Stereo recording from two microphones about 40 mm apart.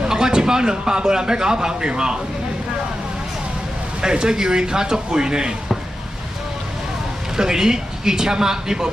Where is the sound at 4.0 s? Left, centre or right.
Centre.